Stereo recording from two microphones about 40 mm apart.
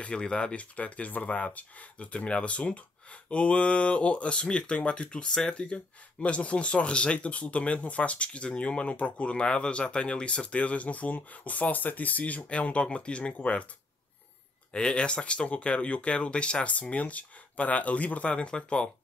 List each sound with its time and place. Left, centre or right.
0.0 s speech: left
14.7 s speech: left
16.7 s speech: left